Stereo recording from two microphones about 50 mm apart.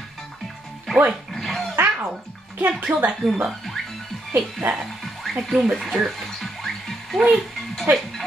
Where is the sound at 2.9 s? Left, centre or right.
Right.